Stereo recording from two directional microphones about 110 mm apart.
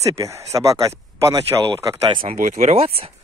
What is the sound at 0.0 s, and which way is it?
Speech, 30° right (ahead or behind).